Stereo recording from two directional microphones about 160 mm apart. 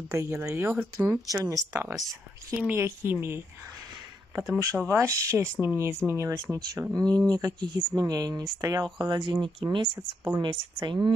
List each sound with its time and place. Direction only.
0.1 s speech: 15° right (ahead or behind)
1.7 s speech: 10° right (ahead or behind)
4.8 s speech: 20° right (ahead or behind)